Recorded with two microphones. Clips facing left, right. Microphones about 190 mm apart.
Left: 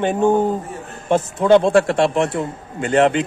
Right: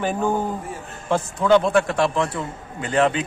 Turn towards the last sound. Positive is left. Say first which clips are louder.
# left 4 dB
turn(degrees=25)  # may be behind; listen again after turning